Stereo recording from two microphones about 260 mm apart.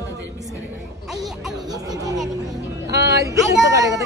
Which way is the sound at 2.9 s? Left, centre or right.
Right.